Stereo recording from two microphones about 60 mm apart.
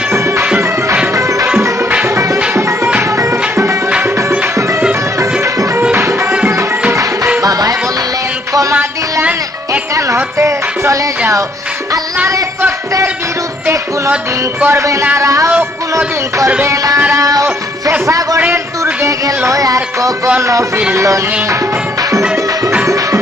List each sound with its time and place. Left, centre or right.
0.1 s music: right
5.2 s music: right
7.4 s music: right
10.1 s music: right
14.7 s music: right
16.6 s music: right
18.0 s speech: right
19.0 s music: right
20.3 s music: right